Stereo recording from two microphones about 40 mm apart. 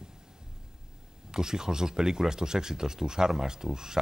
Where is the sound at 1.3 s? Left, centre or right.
Centre.